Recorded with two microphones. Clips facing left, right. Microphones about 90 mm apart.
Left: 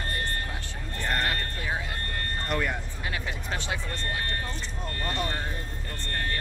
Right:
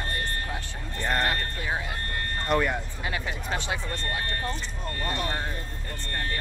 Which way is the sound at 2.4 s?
35° right (ahead or behind).